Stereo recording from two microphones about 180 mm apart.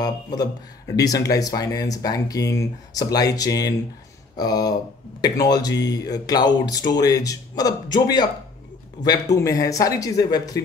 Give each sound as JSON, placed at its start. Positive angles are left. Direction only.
{"t": 0.0, "sound": "speech", "side_deg": 20}
{"t": 9.4, "sound": "speech", "side_deg": 20}